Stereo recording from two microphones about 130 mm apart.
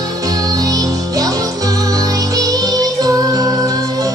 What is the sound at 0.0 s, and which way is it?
Music, 25° right (ahead or behind).